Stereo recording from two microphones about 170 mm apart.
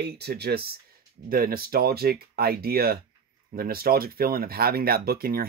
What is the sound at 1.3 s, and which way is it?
Speech, 60° right (ahead or behind).